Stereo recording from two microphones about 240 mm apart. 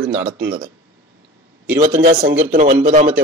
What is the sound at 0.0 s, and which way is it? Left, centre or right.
Speech, right.